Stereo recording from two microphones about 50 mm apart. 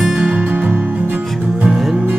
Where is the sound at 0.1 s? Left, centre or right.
Right.